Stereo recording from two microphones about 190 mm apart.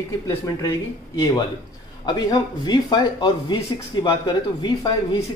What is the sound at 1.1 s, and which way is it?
Speech, 20° left (ahead or behind).